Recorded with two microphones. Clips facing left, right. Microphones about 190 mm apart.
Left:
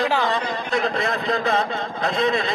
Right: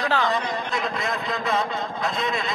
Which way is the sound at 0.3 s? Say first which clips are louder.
Left 2 dB; 30° left (ahead or behind).